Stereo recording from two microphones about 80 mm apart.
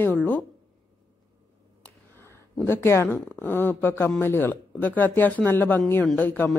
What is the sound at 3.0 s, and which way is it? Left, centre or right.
Speech, left.